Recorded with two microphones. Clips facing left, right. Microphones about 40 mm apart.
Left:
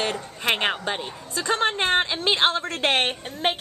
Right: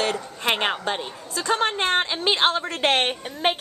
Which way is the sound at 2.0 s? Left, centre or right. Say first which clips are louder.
Even; centre.